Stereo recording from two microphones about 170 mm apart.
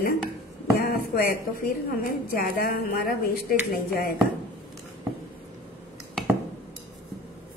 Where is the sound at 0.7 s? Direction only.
65° left (ahead or behind).